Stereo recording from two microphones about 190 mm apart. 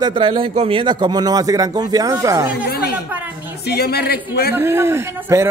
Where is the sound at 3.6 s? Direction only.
60° left (ahead or behind).